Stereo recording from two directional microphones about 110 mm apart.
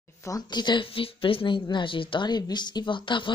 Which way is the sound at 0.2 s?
35° left (ahead or behind).